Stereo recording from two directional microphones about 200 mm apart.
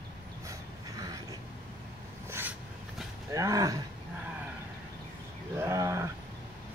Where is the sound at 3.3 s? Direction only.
15° right (ahead or behind).